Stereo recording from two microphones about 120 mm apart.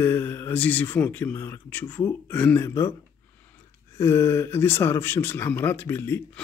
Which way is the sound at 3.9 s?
25° left (ahead or behind).